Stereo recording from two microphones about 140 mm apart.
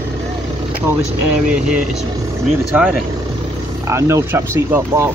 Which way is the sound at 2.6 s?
5° right (ahead or behind).